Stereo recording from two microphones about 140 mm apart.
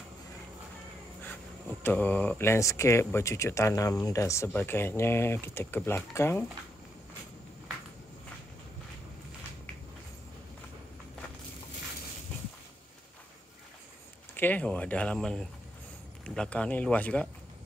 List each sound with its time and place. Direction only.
1.2 s speech: 15° left (ahead or behind)
14.3 s speech: 15° left (ahead or behind)